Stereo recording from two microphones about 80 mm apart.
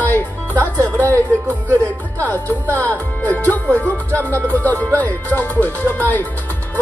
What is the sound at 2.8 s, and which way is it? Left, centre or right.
Speech, left.